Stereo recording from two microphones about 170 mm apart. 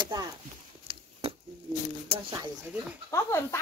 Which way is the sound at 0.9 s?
35° right (ahead or behind).